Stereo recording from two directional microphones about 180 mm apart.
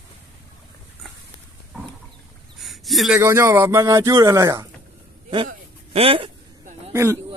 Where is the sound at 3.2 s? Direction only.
15° right (ahead or behind).